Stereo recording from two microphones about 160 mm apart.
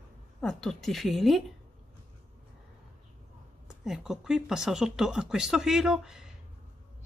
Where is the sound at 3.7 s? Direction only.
5° right (ahead or behind).